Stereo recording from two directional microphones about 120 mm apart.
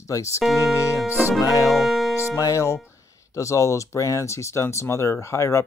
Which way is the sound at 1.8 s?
Centre (ahead or behind).